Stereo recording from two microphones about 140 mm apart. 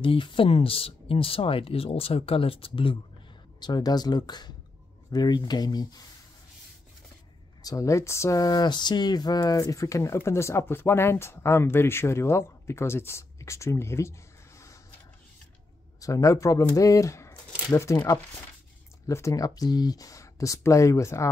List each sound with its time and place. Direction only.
0.0 s speech: 35° left (ahead or behind)
7.6 s speech: 25° left (ahead or behind)
16.0 s speech: 25° left (ahead or behind)